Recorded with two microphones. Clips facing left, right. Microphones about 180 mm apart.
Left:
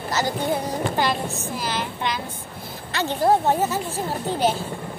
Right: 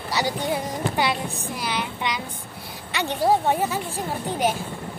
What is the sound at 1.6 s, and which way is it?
Speech, 15° right (ahead or behind).